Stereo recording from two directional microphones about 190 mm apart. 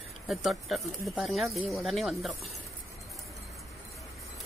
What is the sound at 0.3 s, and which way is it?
Speech, centre (ahead or behind).